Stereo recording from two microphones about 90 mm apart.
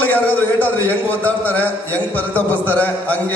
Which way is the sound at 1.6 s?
15° left (ahead or behind).